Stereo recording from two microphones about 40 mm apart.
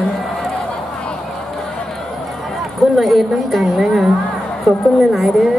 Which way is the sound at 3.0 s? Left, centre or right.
Centre.